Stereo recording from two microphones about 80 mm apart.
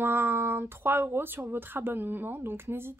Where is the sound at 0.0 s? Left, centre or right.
Right.